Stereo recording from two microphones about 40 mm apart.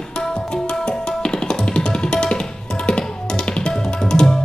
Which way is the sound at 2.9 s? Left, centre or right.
Centre.